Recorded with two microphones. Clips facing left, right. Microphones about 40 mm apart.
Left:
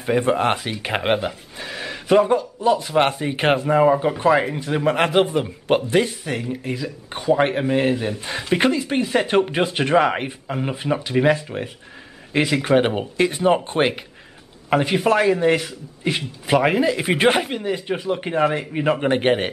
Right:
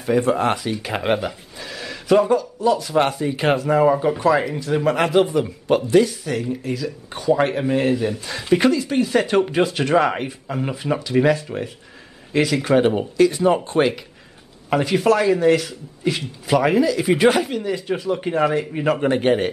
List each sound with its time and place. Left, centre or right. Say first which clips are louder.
0.0 s speech: even; left
1.1 s speech: even; centre
3.6 s speech: even; centre
4.2 s speech: left 1 dB; left
14.7 s speech: right 1 dB; centre